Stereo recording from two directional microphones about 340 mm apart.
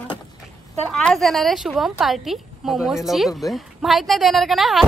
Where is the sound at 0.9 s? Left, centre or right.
Centre.